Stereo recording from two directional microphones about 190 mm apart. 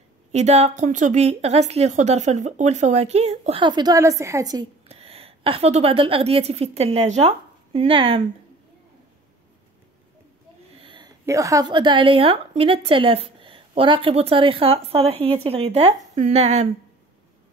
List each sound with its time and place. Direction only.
0.3 s a woman's voice: 35° right (ahead or behind); by 4.6 s 20° right (ahead or behind)
4.8 s a woman's voice: 30° right (ahead or behind)
10.8 s a woman's voice: 25° right (ahead or behind)